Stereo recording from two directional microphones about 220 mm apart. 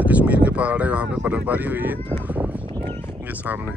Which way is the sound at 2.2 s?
5° right (ahead or behind).